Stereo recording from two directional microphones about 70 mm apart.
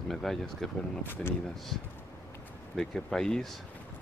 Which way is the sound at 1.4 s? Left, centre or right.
Centre.